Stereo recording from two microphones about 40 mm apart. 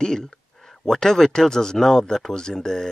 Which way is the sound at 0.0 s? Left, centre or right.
Centre.